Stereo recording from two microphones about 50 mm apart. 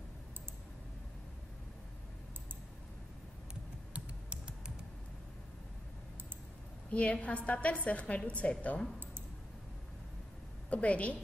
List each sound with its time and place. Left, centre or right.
3.9 s typing: centre
6.9 s a woman's voice: left
10.7 s a woman's voice: left